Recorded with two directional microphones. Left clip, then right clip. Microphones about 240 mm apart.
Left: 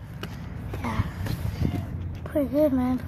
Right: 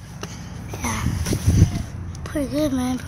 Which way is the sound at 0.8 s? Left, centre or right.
Right.